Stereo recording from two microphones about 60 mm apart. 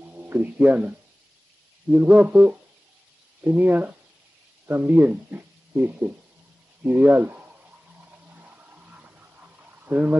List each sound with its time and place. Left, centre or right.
0.0 s speech: right
1.9 s music: right
3.4 s speech: right
5.3 s a sound: right